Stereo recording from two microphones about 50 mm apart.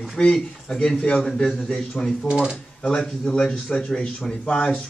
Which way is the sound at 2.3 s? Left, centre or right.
Centre.